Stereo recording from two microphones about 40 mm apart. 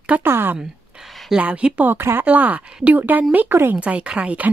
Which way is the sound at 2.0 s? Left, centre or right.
Right.